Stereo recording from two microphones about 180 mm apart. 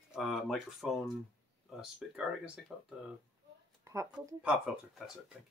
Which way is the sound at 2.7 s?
Centre (ahead or behind).